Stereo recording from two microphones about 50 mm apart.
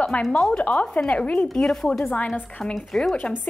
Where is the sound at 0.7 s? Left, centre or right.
Left.